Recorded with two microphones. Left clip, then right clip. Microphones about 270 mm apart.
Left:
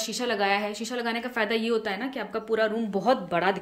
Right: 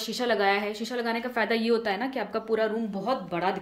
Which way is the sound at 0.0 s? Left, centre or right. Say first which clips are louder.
Right 1 dB; centre.